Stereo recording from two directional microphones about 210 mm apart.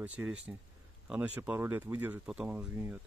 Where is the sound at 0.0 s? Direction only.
5° right (ahead or behind).